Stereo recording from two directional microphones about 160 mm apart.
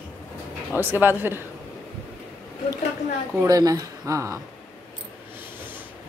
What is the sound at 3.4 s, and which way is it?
Speech, 20° right (ahead or behind).